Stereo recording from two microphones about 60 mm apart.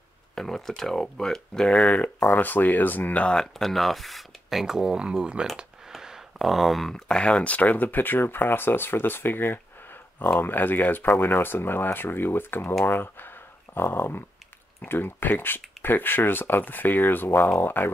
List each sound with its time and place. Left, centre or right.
0.4 s speech: centre
2.0 s speech: left
3.3 s speech: centre
5.9 s speech: centre; by 17.9 s left